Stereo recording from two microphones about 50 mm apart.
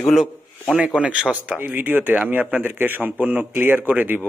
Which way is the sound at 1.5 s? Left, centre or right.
Right.